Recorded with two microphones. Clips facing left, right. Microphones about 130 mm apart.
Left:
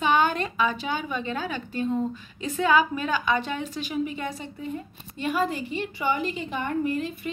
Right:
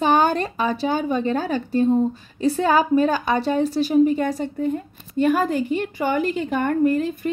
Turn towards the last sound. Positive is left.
turn(degrees=-45)  # may be behind; listen again after turning